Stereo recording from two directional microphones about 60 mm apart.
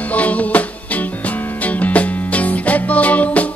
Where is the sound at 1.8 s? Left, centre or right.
Left.